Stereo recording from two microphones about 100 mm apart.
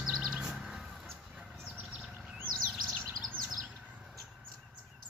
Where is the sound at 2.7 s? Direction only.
5° left (ahead or behind).